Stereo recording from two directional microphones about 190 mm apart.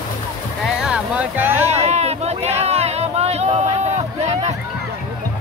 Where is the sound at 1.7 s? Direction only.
35° right (ahead or behind).